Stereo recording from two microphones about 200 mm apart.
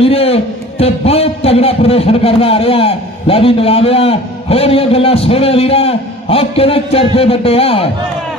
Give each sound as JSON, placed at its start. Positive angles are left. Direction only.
{"t": 0.0, "sound": "a man's voice", "side_deg": 30}